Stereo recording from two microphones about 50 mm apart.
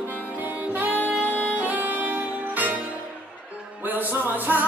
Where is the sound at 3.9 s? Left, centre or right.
Right.